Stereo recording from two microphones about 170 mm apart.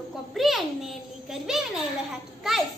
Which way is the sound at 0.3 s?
Centre (ahead or behind).